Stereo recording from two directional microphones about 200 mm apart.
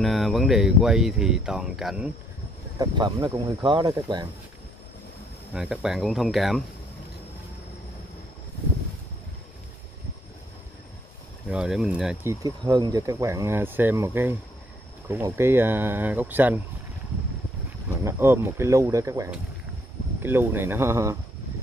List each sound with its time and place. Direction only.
0.0 s speech: centre (ahead or behind)
2.8 s speech: 20° right (ahead or behind)
5.5 s speech: 5° right (ahead or behind)
11.4 s speech: 5° right (ahead or behind)
18.0 s speech: 10° right (ahead or behind)